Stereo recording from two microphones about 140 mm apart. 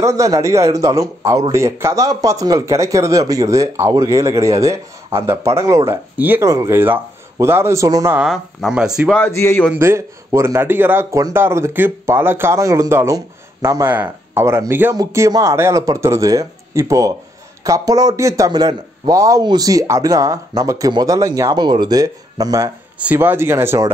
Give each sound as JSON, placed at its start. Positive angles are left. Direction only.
{"t": 0.0, "sound": "speech", "side_deg": -25}
{"t": 8.2, "sound": "speech", "side_deg": 0}
{"t": 9.1, "sound": "a man's voice", "side_deg": 15}
{"t": 9.8, "sound": "speech", "side_deg": -20}
{"t": 22.9, "sound": "speech", "side_deg": -10}